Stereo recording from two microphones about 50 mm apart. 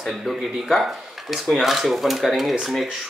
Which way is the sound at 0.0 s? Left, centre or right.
Centre.